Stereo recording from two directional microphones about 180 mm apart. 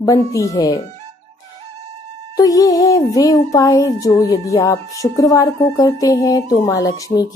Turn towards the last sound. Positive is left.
turn(degrees=20)  # may be behind; listen again after turning